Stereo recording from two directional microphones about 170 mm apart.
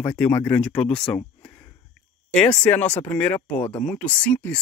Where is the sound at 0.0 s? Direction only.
10° left (ahead or behind).